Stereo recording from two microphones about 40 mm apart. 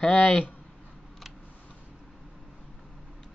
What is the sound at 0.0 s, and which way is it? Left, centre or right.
Speech, left.